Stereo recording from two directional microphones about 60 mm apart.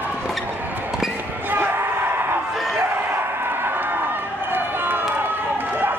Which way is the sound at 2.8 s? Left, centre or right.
Right.